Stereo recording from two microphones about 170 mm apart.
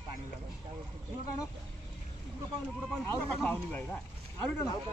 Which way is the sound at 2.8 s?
5° left (ahead or behind).